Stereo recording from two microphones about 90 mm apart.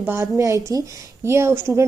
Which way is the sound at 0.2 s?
35° right (ahead or behind).